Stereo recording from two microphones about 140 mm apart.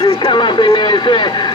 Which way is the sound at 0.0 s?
30° left (ahead or behind).